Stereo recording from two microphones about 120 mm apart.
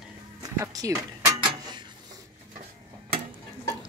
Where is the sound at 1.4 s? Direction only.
40° right (ahead or behind).